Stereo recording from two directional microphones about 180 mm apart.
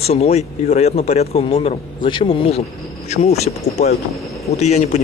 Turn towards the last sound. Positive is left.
turn(degrees=35)  # may be behind; listen again after turning